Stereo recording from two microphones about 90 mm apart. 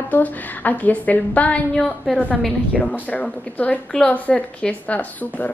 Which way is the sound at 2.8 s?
15° left (ahead or behind).